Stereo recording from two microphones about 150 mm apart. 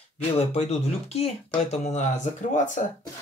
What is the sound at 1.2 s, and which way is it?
Speech, 45° left (ahead or behind).